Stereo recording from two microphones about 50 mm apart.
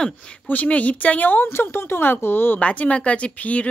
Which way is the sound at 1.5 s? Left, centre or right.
Left.